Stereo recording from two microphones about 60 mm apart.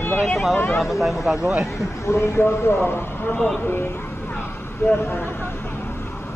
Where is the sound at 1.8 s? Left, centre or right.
Left.